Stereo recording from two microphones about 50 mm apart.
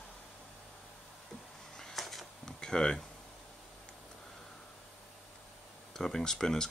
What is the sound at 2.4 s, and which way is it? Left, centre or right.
Tick-tock, centre.